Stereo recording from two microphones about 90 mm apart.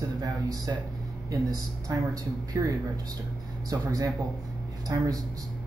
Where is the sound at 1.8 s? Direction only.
45° right (ahead or behind).